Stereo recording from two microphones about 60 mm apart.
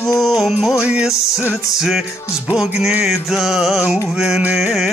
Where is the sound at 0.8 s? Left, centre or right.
Centre.